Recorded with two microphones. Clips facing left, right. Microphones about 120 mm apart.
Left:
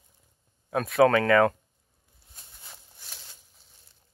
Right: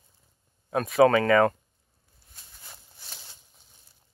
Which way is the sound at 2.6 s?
5° right (ahead or behind).